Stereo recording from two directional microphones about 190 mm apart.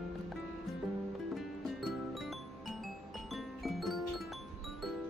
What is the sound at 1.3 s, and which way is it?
Music, centre (ahead or behind).